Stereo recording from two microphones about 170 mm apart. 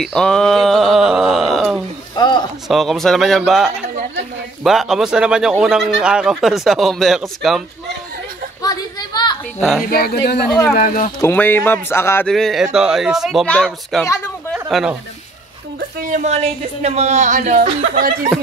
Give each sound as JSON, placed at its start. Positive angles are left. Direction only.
{"t": 0.0, "sound": "speech", "side_deg": 5}
{"t": 2.1, "sound": "a sound", "side_deg": 25}
{"t": 2.7, "sound": "speech", "side_deg": 0}
{"t": 8.6, "sound": "a sound", "side_deg": 25}
{"t": 9.6, "sound": "speech", "side_deg": 0}
{"t": 9.8, "sound": "speech", "side_deg": 60}
{"t": 11.1, "sound": "speech", "side_deg": 15}
{"t": 12.3, "sound": "speech", "side_deg": 0}
{"t": 14.5, "sound": "a sound", "side_deg": 0}
{"t": 16.0, "sound": "speech", "side_deg": -50}